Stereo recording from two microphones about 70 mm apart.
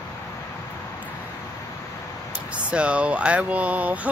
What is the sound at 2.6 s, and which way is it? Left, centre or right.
Speech, centre.